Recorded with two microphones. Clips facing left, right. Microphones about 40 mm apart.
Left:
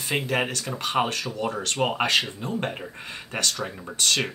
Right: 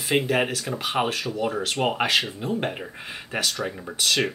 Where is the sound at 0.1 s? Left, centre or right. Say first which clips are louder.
Right 3 dB; centre.